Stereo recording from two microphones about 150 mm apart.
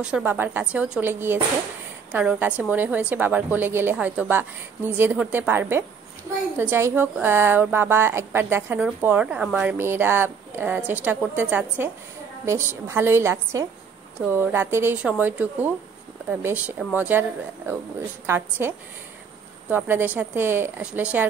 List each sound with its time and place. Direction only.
0.0 s speech: 10° right (ahead or behind)
19.7 s speech: 15° right (ahead or behind)